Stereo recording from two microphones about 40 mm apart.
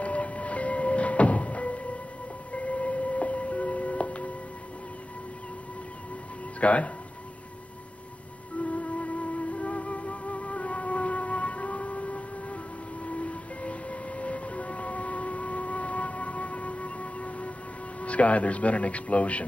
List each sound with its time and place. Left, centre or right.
0.0 s music: left
6.6 s a man's voice: left
8.6 s music: left
18.0 s a man's voice: left